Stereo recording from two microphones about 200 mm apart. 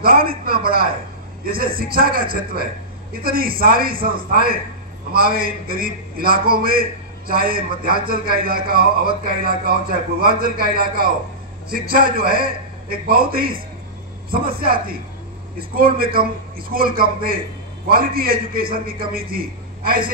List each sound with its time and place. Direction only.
0.0 s a man's voice: 45° right (ahead or behind)